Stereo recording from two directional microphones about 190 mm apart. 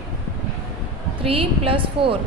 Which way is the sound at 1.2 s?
30° right (ahead or behind).